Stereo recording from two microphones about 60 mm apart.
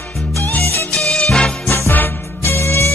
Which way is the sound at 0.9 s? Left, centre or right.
Centre.